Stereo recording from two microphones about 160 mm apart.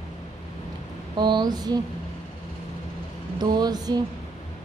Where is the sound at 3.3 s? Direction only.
25° right (ahead or behind).